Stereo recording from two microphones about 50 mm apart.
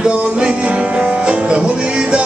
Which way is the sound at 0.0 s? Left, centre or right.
Centre.